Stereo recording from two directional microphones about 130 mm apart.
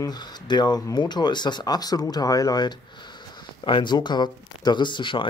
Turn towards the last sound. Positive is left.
turn(degrees=40)  # may be behind; listen again after turning